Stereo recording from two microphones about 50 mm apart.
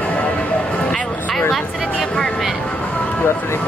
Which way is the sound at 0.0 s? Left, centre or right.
Left.